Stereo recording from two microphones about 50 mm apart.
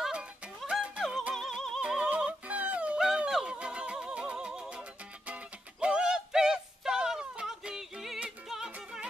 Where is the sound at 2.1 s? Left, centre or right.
Right.